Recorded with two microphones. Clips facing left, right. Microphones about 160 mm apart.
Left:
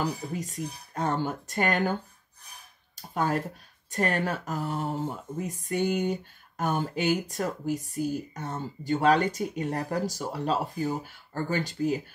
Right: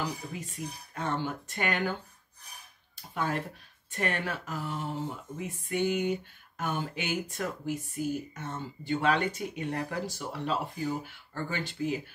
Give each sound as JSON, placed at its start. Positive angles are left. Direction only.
{"t": 0.3, "sound": "speech", "side_deg": 40}
{"t": 3.0, "sound": "speech", "side_deg": 40}